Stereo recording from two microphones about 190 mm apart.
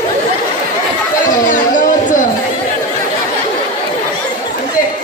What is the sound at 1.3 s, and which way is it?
Chatter, 45° left (ahead or behind).